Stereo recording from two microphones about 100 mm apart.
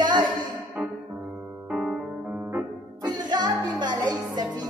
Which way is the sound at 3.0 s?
45° right (ahead or behind).